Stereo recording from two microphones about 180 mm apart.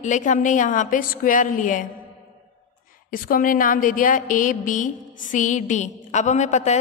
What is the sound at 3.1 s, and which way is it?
A woman's voice, 50° left (ahead or behind).